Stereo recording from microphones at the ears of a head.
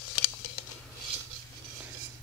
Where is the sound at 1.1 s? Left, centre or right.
Right.